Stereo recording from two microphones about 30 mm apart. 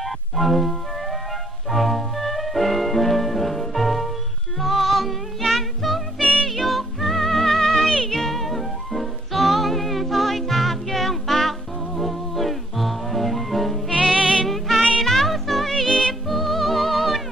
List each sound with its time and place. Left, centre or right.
0.0 s music: centre
15.9 s music: left
16.3 s music: centre